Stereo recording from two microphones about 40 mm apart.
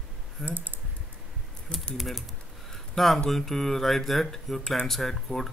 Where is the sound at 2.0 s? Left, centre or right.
Centre.